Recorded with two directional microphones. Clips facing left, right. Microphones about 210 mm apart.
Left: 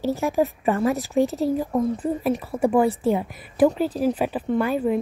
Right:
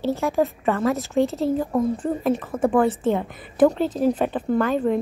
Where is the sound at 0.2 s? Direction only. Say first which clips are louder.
Even; 15° left (ahead or behind).